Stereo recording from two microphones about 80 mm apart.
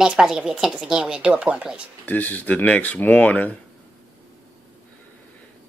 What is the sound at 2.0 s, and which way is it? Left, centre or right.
Speech, left.